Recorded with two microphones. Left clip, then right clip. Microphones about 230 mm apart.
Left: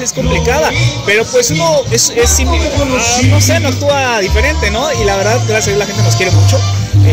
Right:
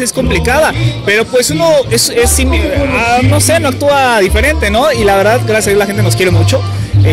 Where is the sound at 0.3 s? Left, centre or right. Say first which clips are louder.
Right 1 dB; right.